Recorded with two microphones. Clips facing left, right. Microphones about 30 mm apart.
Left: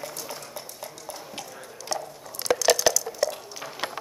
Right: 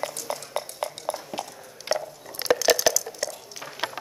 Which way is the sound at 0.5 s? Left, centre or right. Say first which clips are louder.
Right 8 dB; right.